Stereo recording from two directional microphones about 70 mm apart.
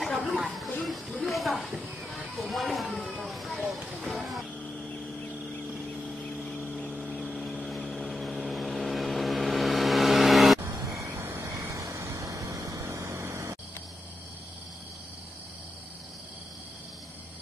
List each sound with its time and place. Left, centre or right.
0.3 s music: centre
1.7 s a sound: centre
4.1 s vehicle: centre
7.0 s vehicle: centre
11.1 s vehicle: right
12.9 s a sound: right